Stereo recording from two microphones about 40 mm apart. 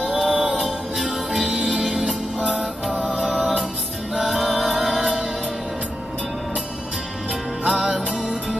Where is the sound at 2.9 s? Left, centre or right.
Right.